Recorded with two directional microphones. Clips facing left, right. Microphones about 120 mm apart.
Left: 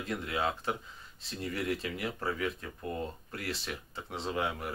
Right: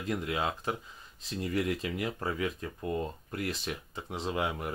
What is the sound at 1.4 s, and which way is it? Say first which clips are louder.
Speech: right 3 dB; 20° right (ahead or behind).